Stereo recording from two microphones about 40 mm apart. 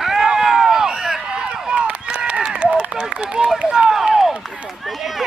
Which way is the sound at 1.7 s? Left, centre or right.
Right.